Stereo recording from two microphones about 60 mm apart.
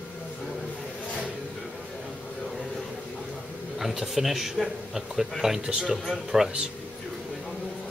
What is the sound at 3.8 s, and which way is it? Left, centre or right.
Speech, centre.